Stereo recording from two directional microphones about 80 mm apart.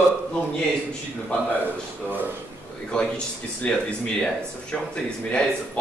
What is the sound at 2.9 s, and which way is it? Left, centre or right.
A man's voice, centre.